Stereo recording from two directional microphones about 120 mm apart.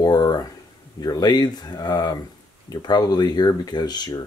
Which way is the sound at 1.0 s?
35° left (ahead or behind).